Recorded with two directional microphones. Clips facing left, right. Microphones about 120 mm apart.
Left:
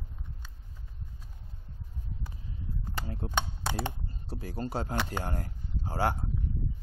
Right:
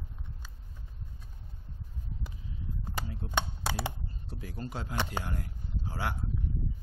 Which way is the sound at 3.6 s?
10° right (ahead or behind).